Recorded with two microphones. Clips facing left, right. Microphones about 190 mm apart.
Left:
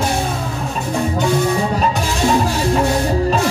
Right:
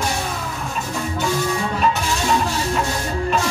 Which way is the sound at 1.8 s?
35° left (ahead or behind).